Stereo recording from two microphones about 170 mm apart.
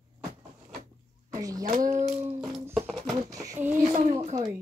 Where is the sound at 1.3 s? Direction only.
20° right (ahead or behind).